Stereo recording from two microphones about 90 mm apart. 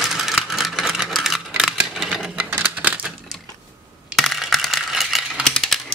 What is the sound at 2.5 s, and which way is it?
Typewriter, 15° right (ahead or behind).